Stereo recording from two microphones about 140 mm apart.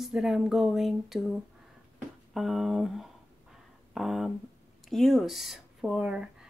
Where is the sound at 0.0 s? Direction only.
5° right (ahead or behind).